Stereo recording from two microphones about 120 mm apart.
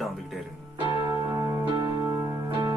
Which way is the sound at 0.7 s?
35° right (ahead or behind).